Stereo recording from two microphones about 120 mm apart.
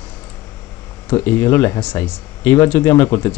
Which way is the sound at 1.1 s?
20° left (ahead or behind).